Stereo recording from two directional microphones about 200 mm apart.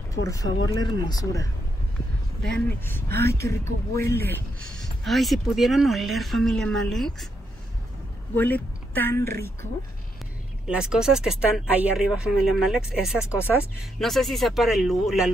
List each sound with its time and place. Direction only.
0.1 s speech: 15° left (ahead or behind)
2.4 s speech: 5° left (ahead or behind)
4.7 s speech: centre (ahead or behind)
8.4 s a woman's voice: 10° left (ahead or behind)
10.7 s speech: 5° right (ahead or behind)